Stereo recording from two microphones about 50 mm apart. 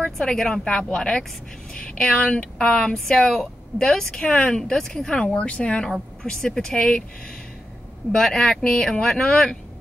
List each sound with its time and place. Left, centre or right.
0.0 s a sound: centre
0.4 s a woman's voice: centre
5.3 s a woman's voice: left
6.2 s a woman's voice: centre
8.1 s a woman's voice: centre